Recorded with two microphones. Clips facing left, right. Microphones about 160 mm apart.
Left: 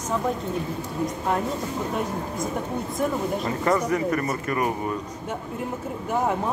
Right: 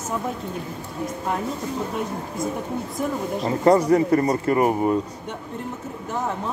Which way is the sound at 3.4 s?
30° right (ahead or behind).